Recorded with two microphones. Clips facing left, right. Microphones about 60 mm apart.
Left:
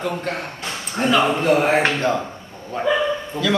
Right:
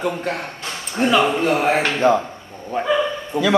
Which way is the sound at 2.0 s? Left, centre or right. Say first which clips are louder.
Right 5 dB; right.